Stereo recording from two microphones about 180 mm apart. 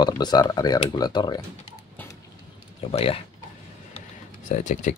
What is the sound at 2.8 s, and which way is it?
Speech, 30° left (ahead or behind).